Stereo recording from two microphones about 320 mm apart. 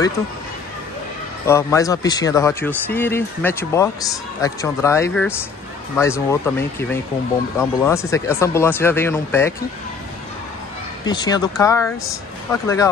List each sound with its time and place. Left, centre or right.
1.4 s speech: centre
11.1 s speech: centre